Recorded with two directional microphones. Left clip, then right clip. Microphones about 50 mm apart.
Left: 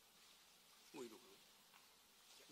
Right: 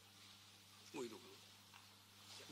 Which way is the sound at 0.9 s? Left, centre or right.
Left.